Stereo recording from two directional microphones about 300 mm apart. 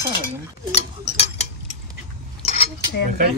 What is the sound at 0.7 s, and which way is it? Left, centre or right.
Speech, left.